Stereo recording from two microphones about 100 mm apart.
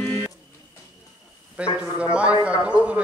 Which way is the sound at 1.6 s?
15° right (ahead or behind).